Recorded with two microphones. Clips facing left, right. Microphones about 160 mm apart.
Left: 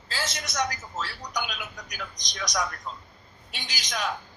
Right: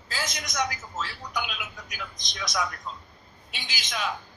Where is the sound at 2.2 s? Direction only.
40° left (ahead or behind).